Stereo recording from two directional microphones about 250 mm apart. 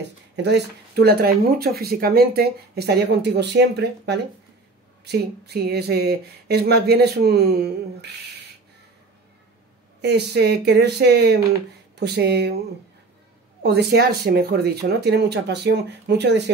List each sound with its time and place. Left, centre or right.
0.0 s speech: right
10.0 s speech: right
13.6 s speech: right